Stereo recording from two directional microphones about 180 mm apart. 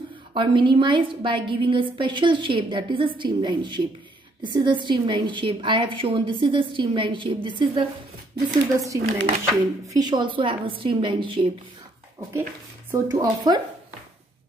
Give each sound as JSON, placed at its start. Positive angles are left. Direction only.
{"t": 0.3, "sound": "a woman's voice", "side_deg": -30}
{"t": 13.1, "sound": "a woman's voice", "side_deg": -20}